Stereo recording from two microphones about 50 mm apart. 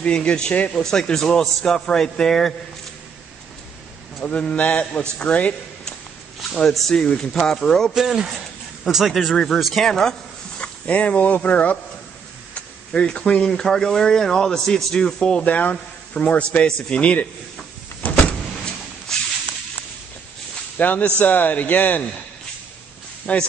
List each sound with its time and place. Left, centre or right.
0.0 s speech: left
0.7 s speech: centre
4.2 s speech: left
6.9 s speech: centre
7.9 s speech: centre
10.9 s speech: left
12.9 s speech: left
15.4 s speech: left
18.0 s power windows: left
19.1 s spray: centre
20.7 s speech: left
23.3 s speech: left